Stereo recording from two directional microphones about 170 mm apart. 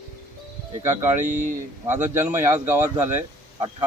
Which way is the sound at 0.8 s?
15° right (ahead or behind).